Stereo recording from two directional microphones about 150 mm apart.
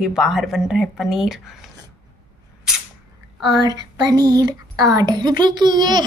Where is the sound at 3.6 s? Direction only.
25° right (ahead or behind).